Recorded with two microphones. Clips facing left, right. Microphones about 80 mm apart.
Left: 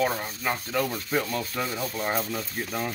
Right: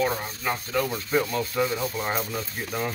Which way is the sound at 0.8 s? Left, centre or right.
Right.